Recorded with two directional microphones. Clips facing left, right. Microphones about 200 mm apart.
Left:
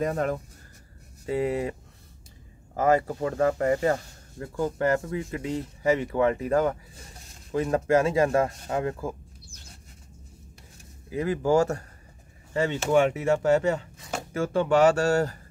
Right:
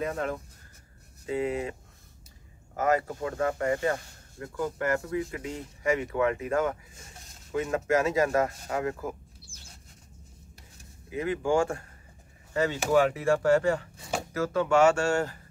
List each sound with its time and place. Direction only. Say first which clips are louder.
0.0 s speech: left 4 dB; 40° left (ahead or behind)
11.1 s speech: left 3 dB; 35° left (ahead or behind)
12.5 s speech: left 2 dB; 25° left (ahead or behind)